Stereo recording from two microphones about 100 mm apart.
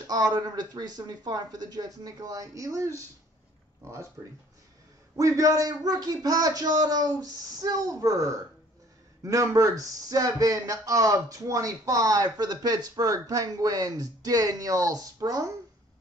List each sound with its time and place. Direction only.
0.0 s speech: 40° right (ahead or behind)
5.1 s speech: 35° right (ahead or behind)